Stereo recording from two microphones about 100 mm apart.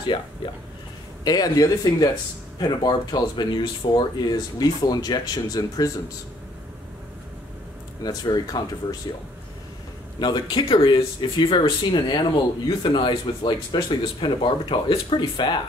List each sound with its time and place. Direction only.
1.2 s speech: 40° left (ahead or behind)
8.0 s speech: 40° left (ahead or behind)
10.1 s speech: 45° left (ahead or behind)